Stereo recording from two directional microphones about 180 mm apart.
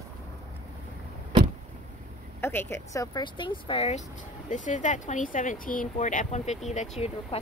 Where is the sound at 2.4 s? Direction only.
10° left (ahead or behind); by 4.0 s 35° left (ahead or behind).